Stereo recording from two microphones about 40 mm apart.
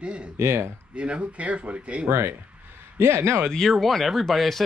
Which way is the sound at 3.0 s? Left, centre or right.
Right.